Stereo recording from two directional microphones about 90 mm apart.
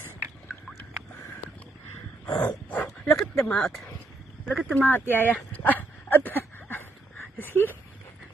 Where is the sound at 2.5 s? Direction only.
15° left (ahead or behind).